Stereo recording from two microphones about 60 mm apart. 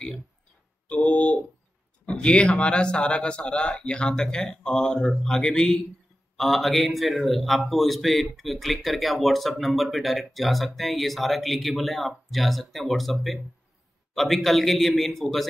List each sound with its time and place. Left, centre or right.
0.8 s a man's voice: left; by 15.4 s centre